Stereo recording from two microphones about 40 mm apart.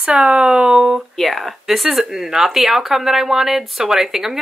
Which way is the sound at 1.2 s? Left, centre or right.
Centre.